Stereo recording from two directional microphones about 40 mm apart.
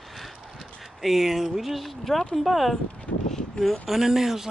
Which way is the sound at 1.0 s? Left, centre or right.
Centre.